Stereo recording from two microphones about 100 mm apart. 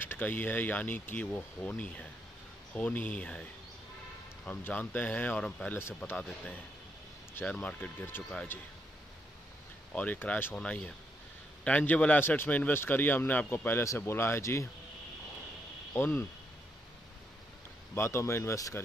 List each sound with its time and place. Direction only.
0.0 s speech: 20° left (ahead or behind)
4.5 s speech: 15° left (ahead or behind)
7.3 s speech: 15° left (ahead or behind)
9.9 s speech: 15° left (ahead or behind)
15.9 s speech: 25° left (ahead or behind)
17.9 s speech: 30° left (ahead or behind)